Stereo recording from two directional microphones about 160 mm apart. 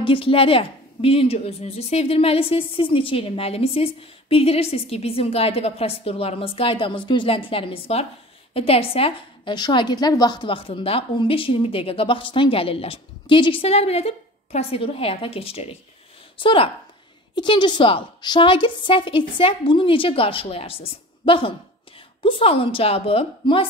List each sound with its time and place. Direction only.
0.0 s a woman's voice: 35° left (ahead or behind)